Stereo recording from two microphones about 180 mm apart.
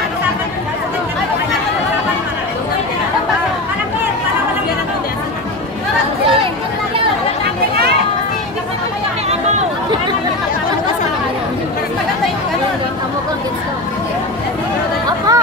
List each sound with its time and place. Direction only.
15.0 s chatter: 20° right (ahead or behind)